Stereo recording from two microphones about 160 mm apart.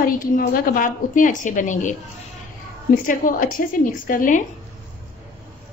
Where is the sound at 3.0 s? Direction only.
55° left (ahead or behind).